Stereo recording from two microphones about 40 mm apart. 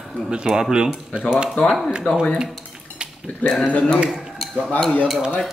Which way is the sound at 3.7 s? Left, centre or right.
Left.